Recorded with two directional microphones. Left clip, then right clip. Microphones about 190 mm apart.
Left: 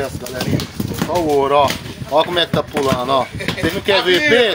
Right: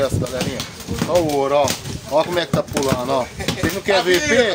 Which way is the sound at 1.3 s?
Centre (ahead or behind).